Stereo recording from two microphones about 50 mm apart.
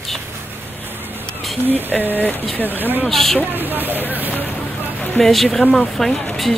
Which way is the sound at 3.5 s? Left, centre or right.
Right.